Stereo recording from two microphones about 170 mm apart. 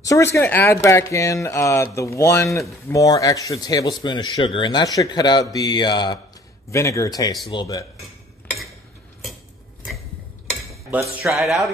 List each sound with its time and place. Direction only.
0.0 s speech: 15° left (ahead or behind)
11.4 s speech: centre (ahead or behind)